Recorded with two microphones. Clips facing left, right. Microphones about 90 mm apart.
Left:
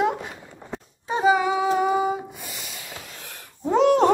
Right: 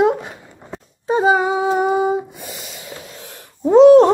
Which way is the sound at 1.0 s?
35° right (ahead or behind).